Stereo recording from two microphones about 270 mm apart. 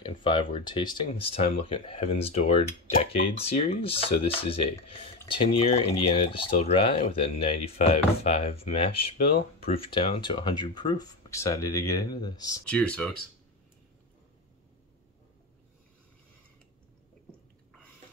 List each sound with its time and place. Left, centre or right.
0.0 s speech: centre